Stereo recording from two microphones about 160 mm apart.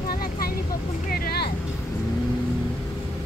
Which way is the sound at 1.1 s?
75° left (ahead or behind).